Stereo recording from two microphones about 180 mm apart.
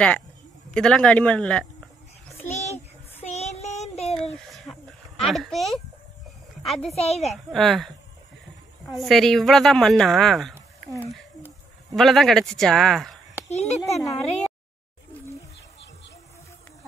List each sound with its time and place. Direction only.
0.7 s a woman's voice: 5° left (ahead or behind)
2.5 s a sound: 40° left (ahead or behind)
3.3 s child singing: 40° left (ahead or behind)
4.1 s a sound: 5° left (ahead or behind)
5.2 s a woman's voice: centre (ahead or behind)
6.9 s a child's voice: 35° left (ahead or behind)
7.5 s a woman's voice: centre (ahead or behind)
11.9 s a woman's voice: centre (ahead or behind)
13.5 s a child's voice: 40° left (ahead or behind)
13.9 s a woman's voice: centre (ahead or behind)